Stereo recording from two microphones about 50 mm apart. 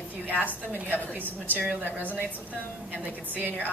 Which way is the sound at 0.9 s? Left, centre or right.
Left.